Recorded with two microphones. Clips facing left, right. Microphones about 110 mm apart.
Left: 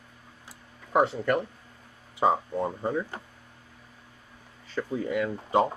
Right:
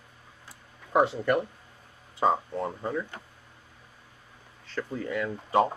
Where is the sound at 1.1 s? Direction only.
5° right (ahead or behind).